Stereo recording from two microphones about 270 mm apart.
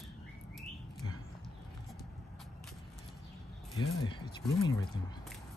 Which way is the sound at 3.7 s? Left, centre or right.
Centre.